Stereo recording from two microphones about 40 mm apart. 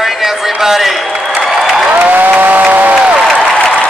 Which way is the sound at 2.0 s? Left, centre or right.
Right.